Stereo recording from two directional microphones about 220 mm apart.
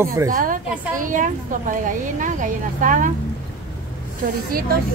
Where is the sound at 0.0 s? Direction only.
15° right (ahead or behind).